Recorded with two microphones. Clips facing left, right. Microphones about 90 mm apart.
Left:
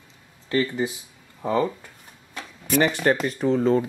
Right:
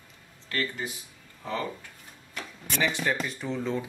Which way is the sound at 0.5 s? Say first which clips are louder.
Left 9 dB; 20° left (ahead or behind).